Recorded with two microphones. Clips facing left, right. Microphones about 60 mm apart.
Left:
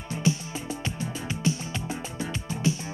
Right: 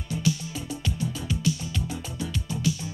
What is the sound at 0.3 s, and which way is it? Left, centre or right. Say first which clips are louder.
Music: left 1 dB; left.